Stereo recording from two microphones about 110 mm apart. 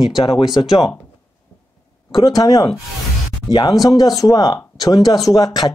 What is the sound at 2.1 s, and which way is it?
Speech, 35° left (ahead or behind).